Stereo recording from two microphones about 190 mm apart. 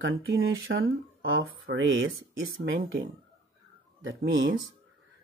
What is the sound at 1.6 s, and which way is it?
Speech, 75° right (ahead or behind).